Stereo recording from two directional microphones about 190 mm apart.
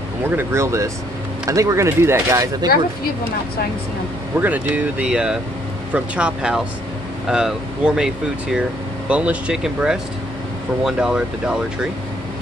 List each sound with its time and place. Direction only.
0.2 s speech: 10° right (ahead or behind)
4.4 s speech: 10° right (ahead or behind)
9.1 s speech: 5° right (ahead or behind)